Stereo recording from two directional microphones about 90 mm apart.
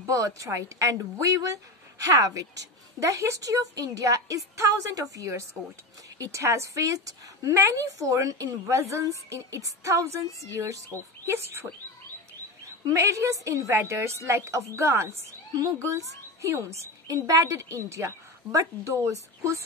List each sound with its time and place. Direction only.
0.0 s speech: 40° right (ahead or behind)
12.8 s speech: 35° right (ahead or behind)